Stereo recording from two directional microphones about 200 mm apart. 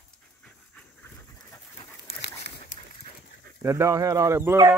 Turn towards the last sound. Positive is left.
turn(degrees=-10)  # may be behind; listen again after turning